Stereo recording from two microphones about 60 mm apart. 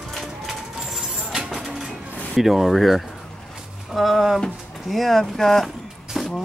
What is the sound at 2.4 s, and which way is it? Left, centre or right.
Speech, centre.